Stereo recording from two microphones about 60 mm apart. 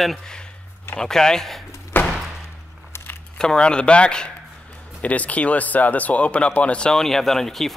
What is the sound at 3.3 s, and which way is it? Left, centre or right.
Speech, centre.